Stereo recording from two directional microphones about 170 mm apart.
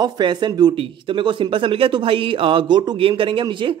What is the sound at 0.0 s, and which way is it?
Speech, 25° right (ahead or behind).